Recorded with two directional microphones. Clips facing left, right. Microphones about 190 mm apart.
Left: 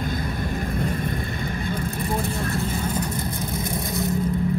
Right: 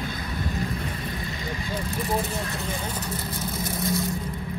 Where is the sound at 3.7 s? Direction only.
15° left (ahead or behind).